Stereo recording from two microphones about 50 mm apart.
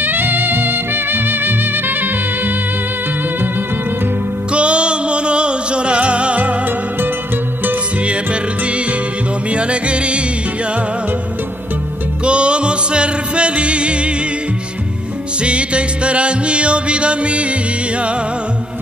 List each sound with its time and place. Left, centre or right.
0.0 s music: right
4.5 s music: right
8.0 s music: right
12.3 s music: right
15.4 s music: right